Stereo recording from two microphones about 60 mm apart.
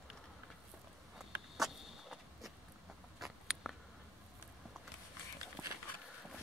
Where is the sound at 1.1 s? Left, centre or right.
Centre.